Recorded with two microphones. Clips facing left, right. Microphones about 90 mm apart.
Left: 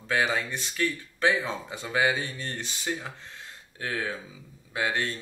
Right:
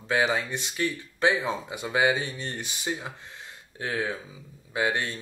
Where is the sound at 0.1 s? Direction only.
20° right (ahead or behind).